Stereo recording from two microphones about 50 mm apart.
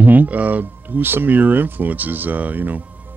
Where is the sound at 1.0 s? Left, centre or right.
Right.